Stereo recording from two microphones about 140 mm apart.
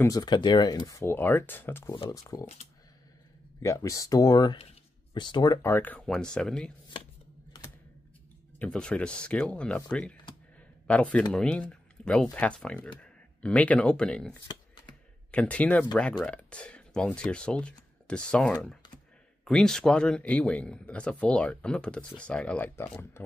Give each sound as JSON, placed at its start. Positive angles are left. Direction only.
{"t": 0.0, "sound": "speech", "side_deg": 25}
{"t": 2.4, "sound": "speech", "side_deg": 50}
{"t": 3.6, "sound": "speech", "side_deg": 25}
{"t": 5.6, "sound": "speech", "side_deg": 15}
{"t": 8.5, "sound": "speech", "side_deg": 5}